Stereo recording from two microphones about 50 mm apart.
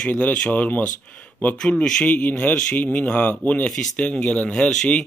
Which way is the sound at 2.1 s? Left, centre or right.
Left.